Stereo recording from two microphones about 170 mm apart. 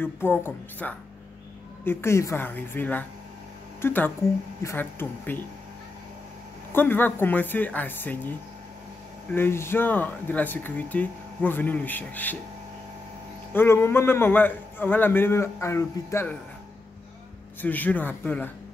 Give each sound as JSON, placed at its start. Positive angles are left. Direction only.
{"t": 0.0, "sound": "speech", "side_deg": 10}
{"t": 6.7, "sound": "speech", "side_deg": 10}
{"t": 13.5, "sound": "speech", "side_deg": 10}
{"t": 17.6, "sound": "speech", "side_deg": 10}